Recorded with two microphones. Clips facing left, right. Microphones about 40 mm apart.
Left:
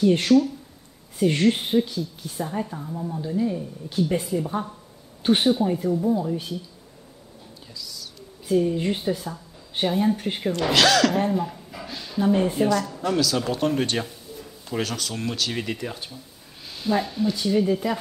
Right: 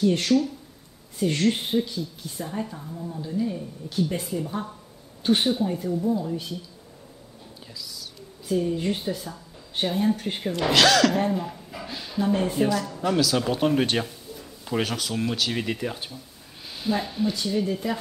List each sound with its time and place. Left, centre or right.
0.3 s a woman's voice: left
1.5 s a woman's voice: centre
3.5 s a woman's voice: centre
8.5 s a woman's voice: centre
14.8 s speech: centre
17.5 s a woman's voice: centre